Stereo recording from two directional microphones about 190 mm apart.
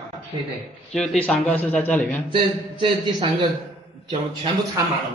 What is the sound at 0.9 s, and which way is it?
A man's voice, 5° left (ahead or behind).